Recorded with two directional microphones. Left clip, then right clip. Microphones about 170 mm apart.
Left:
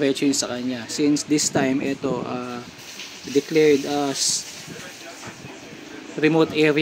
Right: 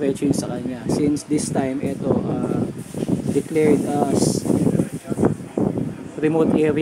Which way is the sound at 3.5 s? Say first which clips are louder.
Even; centre (ahead or behind).